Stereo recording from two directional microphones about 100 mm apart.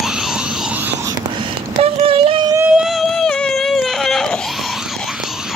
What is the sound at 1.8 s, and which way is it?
Child singing, 75° right (ahead or behind).